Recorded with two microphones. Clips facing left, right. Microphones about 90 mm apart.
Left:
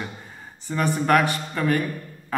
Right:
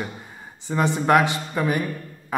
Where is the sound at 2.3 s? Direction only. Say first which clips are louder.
Right 1 dB; 15° right (ahead or behind).